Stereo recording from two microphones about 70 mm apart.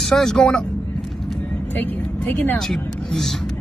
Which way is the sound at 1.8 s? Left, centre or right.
Left.